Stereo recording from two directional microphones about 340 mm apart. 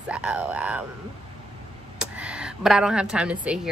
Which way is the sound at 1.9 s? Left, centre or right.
Centre.